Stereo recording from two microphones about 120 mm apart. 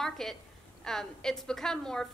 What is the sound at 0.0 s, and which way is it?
A woman's voice, centre (ahead or behind).